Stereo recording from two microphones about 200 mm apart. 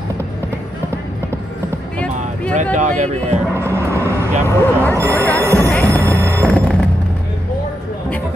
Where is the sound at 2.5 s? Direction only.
40° right (ahead or behind).